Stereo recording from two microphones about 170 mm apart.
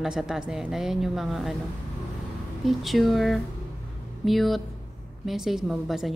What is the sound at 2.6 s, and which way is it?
A woman's voice, centre (ahead or behind).